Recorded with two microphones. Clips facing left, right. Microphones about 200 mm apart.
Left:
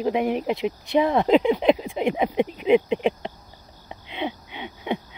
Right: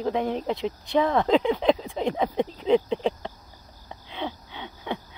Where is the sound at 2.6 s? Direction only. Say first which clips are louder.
Left 3 dB; 15° left (ahead or behind).